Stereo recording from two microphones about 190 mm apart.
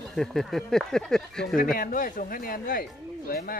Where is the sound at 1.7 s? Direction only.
50° left (ahead or behind).